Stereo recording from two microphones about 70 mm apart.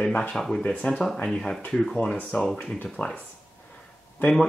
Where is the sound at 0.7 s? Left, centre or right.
Left.